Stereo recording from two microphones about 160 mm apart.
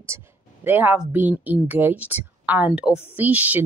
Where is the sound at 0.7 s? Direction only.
10° right (ahead or behind).